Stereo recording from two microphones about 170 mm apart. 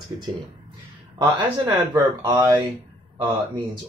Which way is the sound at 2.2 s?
15° right (ahead or behind).